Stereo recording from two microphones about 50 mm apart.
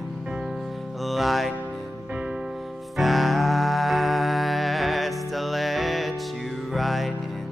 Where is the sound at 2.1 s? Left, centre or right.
Right.